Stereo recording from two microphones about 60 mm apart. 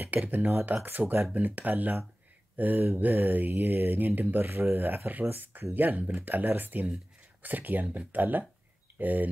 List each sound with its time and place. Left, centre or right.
0.0 s speech: right